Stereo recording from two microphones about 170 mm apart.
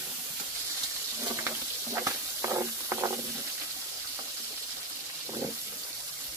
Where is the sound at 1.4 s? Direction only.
15° right (ahead or behind).